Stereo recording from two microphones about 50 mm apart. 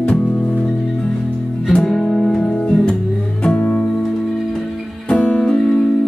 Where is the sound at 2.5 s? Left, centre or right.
Left.